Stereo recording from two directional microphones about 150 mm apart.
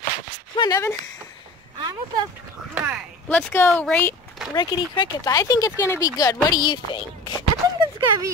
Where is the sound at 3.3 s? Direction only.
10° left (ahead or behind).